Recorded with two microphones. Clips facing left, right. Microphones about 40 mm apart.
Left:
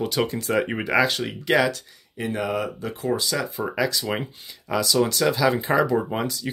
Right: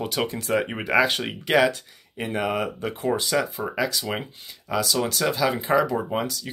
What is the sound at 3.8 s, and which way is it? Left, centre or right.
Speech, centre.